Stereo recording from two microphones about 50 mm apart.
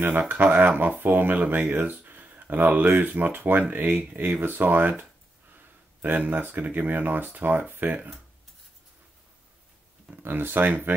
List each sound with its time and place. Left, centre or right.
0.2 s speech: right
6.0 s speech: right
10.2 s speech: right